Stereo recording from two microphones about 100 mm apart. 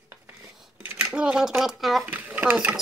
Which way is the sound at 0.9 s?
10° right (ahead or behind).